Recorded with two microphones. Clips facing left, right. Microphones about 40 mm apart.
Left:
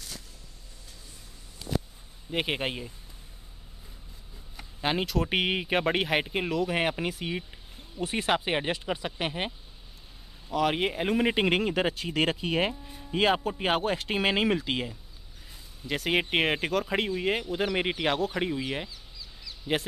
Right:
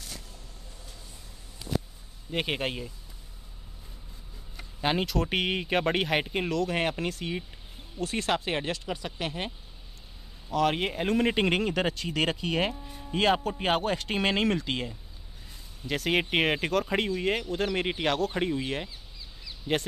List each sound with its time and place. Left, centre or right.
2.3 s speech: centre
4.6 s speech: centre
10.5 s speech: centre